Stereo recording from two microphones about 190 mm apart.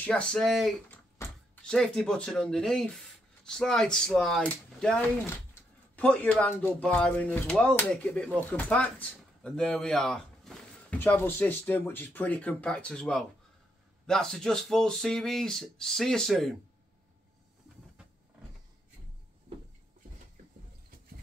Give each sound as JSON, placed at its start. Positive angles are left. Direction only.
{"t": 0.0, "sound": "speech", "side_deg": 5}
{"t": 1.1, "sound": "speech", "side_deg": 10}